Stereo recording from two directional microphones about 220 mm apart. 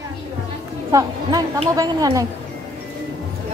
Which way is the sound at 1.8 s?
15° right (ahead or behind).